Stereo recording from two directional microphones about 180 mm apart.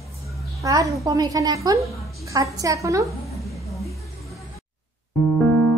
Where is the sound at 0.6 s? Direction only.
15° right (ahead or behind).